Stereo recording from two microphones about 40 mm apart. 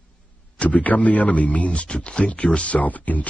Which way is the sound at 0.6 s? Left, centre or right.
Left.